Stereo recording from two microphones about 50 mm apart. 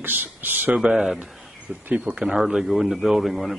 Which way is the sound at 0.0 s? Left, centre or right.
Right.